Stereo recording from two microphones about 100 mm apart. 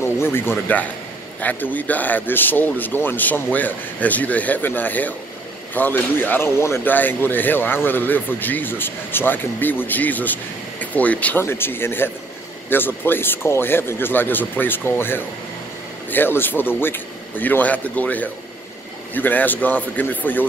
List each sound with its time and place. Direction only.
0.0 s speech: 25° left (ahead or behind)